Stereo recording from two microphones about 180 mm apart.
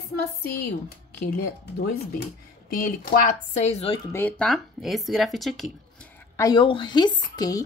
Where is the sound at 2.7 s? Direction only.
55° left (ahead or behind); by 4.0 s 35° left (ahead or behind).